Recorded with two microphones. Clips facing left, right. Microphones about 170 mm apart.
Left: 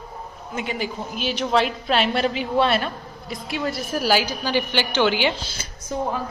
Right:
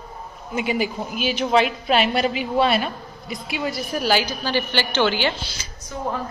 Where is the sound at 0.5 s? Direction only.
10° right (ahead or behind); by 5.4 s 10° left (ahead or behind).